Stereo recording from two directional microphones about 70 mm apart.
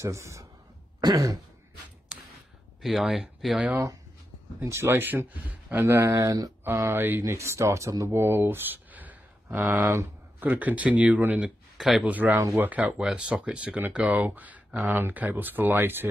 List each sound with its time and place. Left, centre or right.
0.0 s a man's voice: right
2.1 s a sound: centre
2.8 s speech: centre
4.6 s speech: right
5.9 s speech: right
6.1 s speech: right
7.0 s speech: right
7.2 s speech: right